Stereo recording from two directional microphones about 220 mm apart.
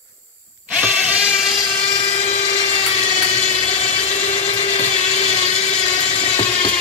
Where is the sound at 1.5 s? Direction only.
20° left (ahead or behind).